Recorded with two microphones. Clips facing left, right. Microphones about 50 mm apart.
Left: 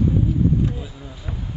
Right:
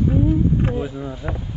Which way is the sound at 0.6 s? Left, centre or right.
Right.